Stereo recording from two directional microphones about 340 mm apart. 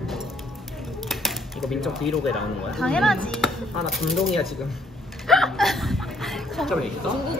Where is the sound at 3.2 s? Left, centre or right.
Centre.